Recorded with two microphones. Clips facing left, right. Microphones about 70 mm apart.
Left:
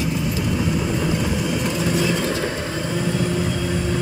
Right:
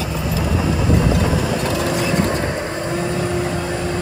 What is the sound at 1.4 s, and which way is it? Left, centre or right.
Vehicle, right.